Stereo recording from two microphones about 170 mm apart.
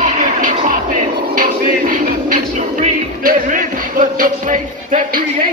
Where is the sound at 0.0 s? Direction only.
50° right (ahead or behind).